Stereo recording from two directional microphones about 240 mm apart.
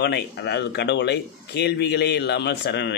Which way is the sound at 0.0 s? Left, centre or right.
Left.